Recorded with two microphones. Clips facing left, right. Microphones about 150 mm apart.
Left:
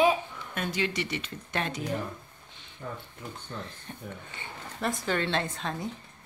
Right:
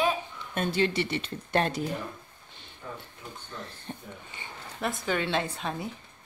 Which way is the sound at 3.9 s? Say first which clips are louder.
Right 3 dB; 30° right (ahead or behind).